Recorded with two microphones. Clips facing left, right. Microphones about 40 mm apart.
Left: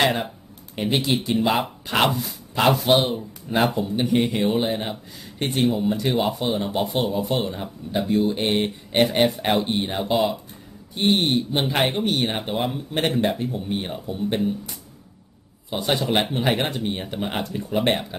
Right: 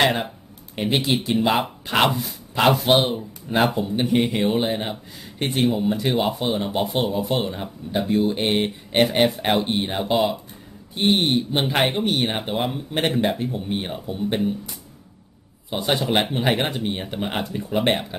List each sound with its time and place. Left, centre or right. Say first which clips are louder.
0.0 s speech: right 1 dB; centre
2.8 s speech: right 1 dB; right
15.7 s speech: right 1 dB; centre